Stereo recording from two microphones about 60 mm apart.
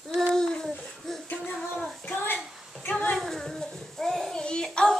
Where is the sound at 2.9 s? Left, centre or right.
Centre.